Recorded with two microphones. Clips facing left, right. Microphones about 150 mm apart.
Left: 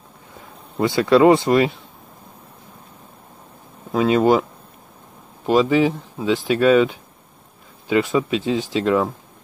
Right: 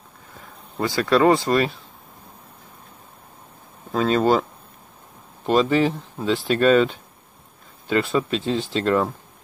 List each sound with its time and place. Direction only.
0.7 s speech: 20° left (ahead or behind)
3.9 s speech: 10° left (ahead or behind)